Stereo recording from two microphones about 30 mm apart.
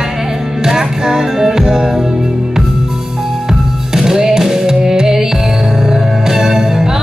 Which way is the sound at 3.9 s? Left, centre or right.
Centre.